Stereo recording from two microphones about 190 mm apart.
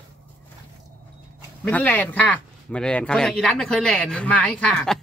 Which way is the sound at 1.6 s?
10° left (ahead or behind).